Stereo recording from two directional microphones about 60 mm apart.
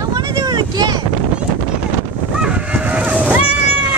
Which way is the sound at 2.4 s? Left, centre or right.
Right.